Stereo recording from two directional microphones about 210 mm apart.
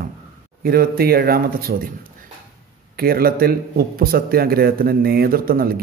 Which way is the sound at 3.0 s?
45° right (ahead or behind).